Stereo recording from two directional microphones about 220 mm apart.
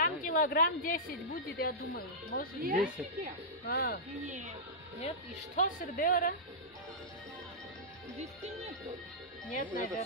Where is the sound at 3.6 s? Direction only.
45° left (ahead or behind).